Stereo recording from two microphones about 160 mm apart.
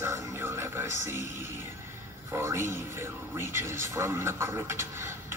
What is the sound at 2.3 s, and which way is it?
Speech, 15° right (ahead or behind).